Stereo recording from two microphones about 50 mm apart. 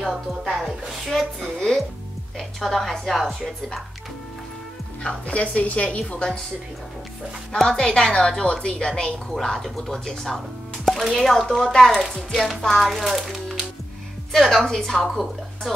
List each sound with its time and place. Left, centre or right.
0.1 s a woman's voice: centre
0.6 s a woman's voice: centre
5.0 s a woman's voice: left
7.6 s a woman's voice: centre
9.3 s a child's voice: centre
15.0 s speech: centre